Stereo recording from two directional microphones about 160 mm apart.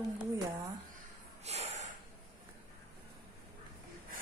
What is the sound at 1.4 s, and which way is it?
Snort, 40° right (ahead or behind).